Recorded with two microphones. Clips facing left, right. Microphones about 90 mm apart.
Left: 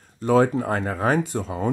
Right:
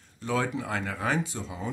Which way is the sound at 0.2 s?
40° left (ahead or behind).